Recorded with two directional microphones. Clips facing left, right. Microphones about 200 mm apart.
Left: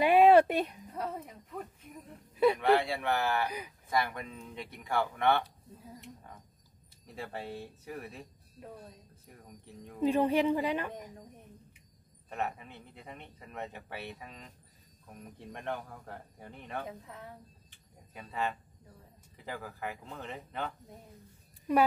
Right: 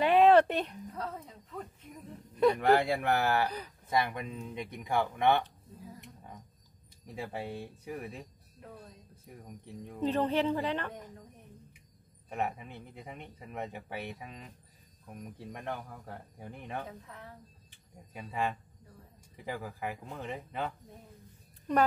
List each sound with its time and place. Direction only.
0.0 s a sound: 10° left (ahead or behind)
0.9 s speech: 15° left (ahead or behind)
2.3 s speech: 5° left (ahead or behind)
2.8 s speech: 45° right (ahead or behind)
3.4 s speech: 10° left (ahead or behind)
3.9 s speech: 20° right (ahead or behind)
7.2 s speech: 10° right (ahead or behind)
9.9 s speech: 10° left (ahead or behind)
12.3 s speech: 10° right (ahead or behind)
18.1 s speech: 10° right (ahead or behind)
21.7 s speech: 5° left (ahead or behind)